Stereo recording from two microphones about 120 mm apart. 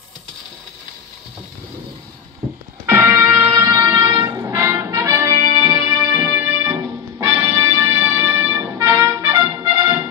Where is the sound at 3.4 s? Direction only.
35° right (ahead or behind).